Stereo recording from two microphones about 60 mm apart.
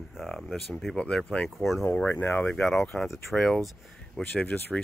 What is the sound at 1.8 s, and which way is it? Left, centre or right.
Speech, left.